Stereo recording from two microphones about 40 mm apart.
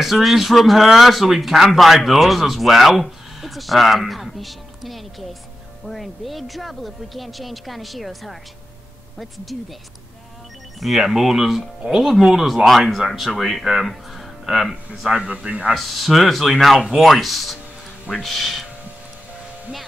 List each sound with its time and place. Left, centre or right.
0.0 s a woman's voice: centre
10.8 s speech: centre
15.0 s speech: right
15.7 s speech: centre